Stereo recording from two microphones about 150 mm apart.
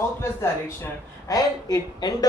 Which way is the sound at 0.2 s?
15° left (ahead or behind).